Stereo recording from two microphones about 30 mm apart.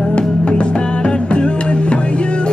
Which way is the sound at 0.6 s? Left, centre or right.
Left.